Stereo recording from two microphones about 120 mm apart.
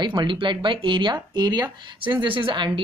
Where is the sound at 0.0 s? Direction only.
40° right (ahead or behind).